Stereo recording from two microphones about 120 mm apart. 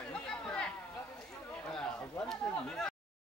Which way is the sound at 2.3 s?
5° left (ahead or behind).